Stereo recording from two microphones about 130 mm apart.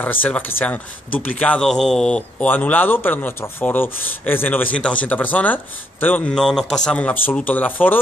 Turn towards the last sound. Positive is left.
turn(degrees=15)  # may be behind; listen again after turning